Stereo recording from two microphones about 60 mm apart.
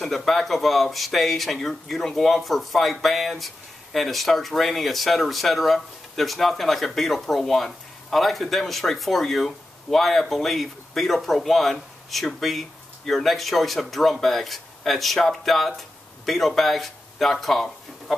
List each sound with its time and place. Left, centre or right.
0.0 s speech: centre